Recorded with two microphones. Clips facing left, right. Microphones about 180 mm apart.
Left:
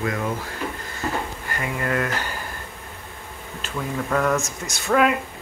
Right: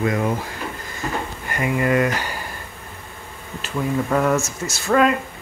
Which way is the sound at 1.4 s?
15° right (ahead or behind).